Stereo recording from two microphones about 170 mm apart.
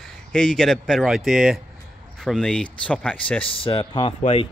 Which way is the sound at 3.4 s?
30° left (ahead or behind).